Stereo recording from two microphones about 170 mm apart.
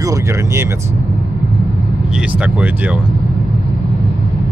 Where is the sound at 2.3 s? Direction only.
10° right (ahead or behind).